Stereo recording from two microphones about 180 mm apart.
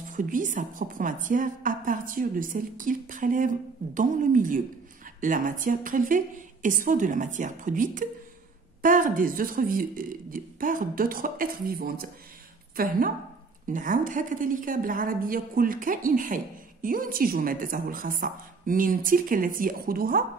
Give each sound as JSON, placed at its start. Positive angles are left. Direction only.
{"t": 0.1, "sound": "a woman's voice", "side_deg": -50}